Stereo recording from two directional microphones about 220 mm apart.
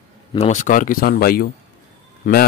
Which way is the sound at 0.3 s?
30° left (ahead or behind).